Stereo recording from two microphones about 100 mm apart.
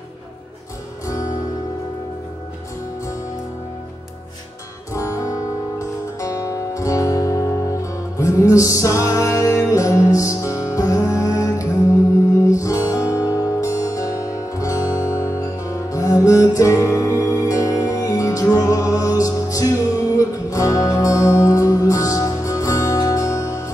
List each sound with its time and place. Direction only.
4.9 s music: 35° left (ahead or behind)